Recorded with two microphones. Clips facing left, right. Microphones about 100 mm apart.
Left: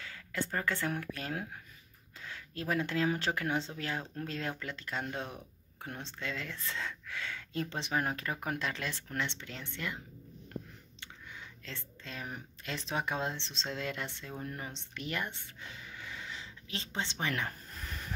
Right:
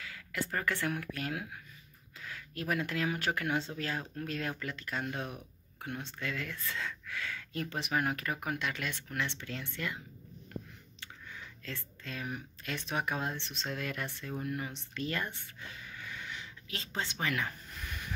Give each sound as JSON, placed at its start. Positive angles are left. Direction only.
{"t": 0.0, "sound": "speech", "side_deg": 30}
{"t": 11.0, "sound": "squish", "side_deg": 25}
{"t": 12.3, "sound": "speech", "side_deg": 30}
{"t": 17.5, "sound": "a sound", "side_deg": 40}